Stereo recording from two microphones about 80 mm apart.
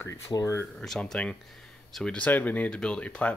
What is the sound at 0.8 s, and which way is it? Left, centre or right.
Speech, centre.